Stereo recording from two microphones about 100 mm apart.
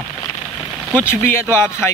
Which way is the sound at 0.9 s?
20° left (ahead or behind).